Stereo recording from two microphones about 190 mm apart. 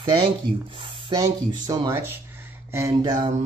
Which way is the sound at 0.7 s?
25° right (ahead or behind).